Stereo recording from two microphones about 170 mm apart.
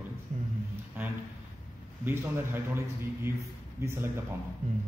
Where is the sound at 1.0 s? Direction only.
10° right (ahead or behind).